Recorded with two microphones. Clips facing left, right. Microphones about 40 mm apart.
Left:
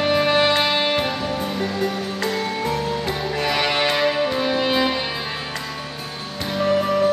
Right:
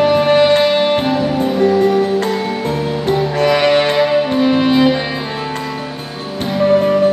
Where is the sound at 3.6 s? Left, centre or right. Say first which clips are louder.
Right 5 dB; centre.